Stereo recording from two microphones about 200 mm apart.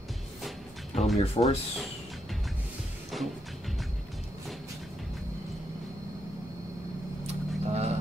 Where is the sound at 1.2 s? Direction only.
30° left (ahead or behind).